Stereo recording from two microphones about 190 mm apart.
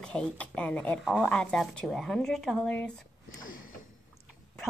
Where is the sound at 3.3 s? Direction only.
90° left.